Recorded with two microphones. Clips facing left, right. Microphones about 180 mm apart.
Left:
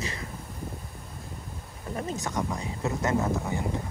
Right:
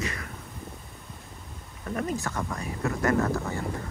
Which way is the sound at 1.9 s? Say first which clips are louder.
Right 1 dB; 25° left (ahead or behind).